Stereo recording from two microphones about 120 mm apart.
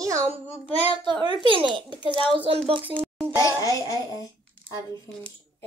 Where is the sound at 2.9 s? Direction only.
35° right (ahead or behind).